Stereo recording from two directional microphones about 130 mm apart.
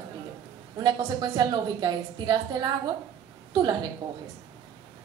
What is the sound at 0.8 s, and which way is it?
A woman's voice, 35° right (ahead or behind).